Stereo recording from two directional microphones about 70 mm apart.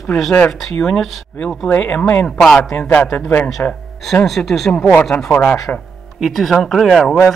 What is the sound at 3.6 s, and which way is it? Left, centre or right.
Speech, left.